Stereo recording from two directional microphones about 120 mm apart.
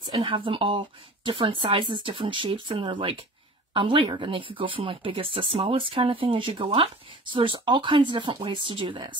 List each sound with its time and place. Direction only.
0.1 s speech: 50° right (ahead or behind)